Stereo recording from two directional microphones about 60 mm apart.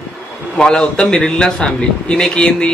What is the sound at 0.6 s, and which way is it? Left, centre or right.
A man's voice, centre.